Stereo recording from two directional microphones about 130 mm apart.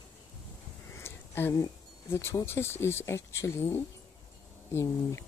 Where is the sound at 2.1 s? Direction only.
20° left (ahead or behind).